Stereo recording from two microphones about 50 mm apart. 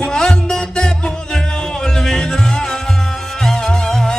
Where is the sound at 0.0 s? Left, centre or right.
Centre.